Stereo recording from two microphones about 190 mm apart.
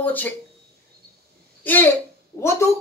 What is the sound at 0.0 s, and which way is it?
Speech, 10° left (ahead or behind).